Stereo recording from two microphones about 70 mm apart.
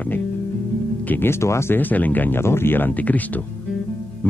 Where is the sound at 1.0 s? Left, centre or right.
Left.